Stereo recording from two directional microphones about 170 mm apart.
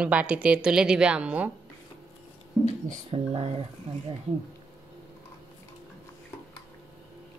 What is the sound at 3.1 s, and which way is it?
Speech, 35° right (ahead or behind).